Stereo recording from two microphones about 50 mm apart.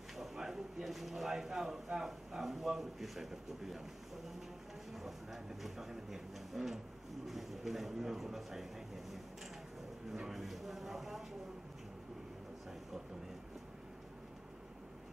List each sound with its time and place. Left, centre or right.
0.2 s speech: centre
4.9 s speech: centre